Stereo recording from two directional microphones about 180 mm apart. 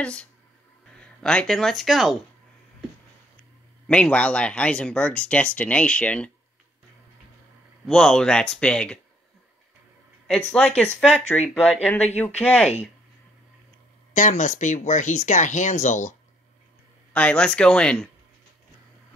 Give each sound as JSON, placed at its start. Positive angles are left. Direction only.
{"t": 0.0, "sound": "speech", "side_deg": 5}
{"t": 3.8, "sound": "speech", "side_deg": 5}
{"t": 7.8, "sound": "speech", "side_deg": 5}
{"t": 10.2, "sound": "speech", "side_deg": 5}
{"t": 14.1, "sound": "speech", "side_deg": 45}
{"t": 17.1, "sound": "speech", "side_deg": 5}